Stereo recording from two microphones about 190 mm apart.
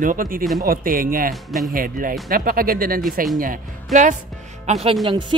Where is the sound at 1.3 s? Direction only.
Centre (ahead or behind).